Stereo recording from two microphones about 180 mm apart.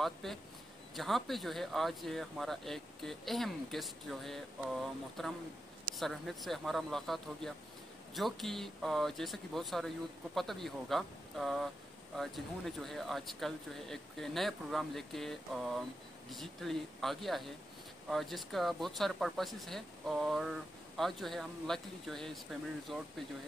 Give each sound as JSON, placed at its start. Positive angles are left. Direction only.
{"t": 0.0, "sound": "speech", "side_deg": 0}